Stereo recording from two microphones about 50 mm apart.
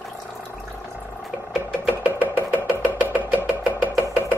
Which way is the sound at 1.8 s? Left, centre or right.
Right.